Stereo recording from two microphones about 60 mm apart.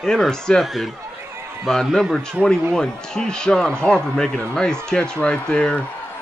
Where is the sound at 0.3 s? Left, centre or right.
Centre.